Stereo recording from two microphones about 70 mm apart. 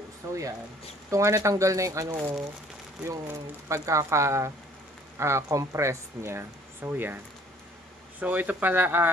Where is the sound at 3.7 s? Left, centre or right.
Right.